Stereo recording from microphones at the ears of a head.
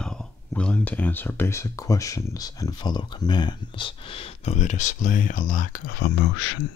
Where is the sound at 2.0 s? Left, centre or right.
Left.